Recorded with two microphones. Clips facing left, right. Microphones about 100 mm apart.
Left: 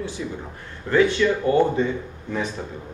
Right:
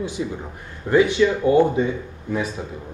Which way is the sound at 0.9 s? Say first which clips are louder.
Right 2 dB; 15° right (ahead or behind).